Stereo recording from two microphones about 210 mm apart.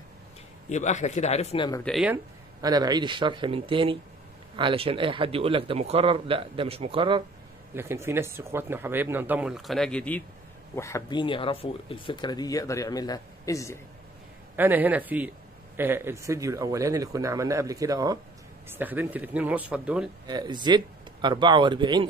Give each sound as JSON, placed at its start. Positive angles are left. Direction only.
{"t": 0.7, "sound": "speech", "side_deg": 35}
{"t": 1.9, "sound": "speech", "side_deg": 0}
{"t": 2.6, "sound": "speech", "side_deg": -20}
{"t": 7.7, "sound": "a man's voice", "side_deg": -10}
{"t": 14.6, "sound": "a man's voice", "side_deg": -10}
{"t": 20.2, "sound": "speech", "side_deg": -20}